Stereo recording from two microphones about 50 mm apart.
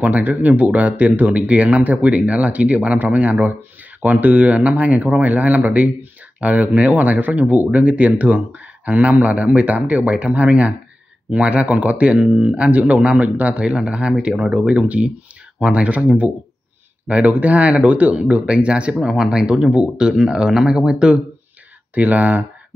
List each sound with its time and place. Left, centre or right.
0.0 s speech: right
21.9 s speech: right